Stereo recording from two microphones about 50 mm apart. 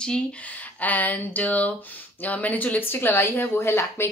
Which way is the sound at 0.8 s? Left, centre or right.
Left.